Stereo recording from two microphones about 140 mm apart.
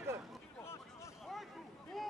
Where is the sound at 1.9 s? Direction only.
Centre (ahead or behind).